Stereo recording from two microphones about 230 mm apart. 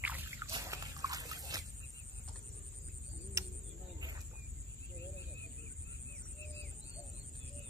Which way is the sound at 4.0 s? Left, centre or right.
Centre.